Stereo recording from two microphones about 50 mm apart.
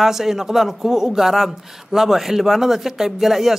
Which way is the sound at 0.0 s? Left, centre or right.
Centre.